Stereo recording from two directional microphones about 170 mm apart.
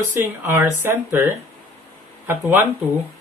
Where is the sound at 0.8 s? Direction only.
15° right (ahead or behind).